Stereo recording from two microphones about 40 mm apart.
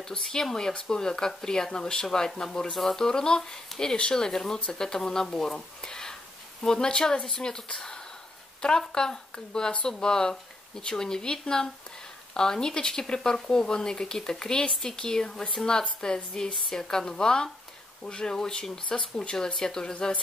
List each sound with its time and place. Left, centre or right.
0.3 s speech: centre